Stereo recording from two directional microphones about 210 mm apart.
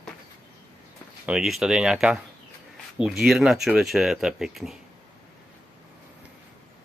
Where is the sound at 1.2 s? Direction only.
5° right (ahead or behind).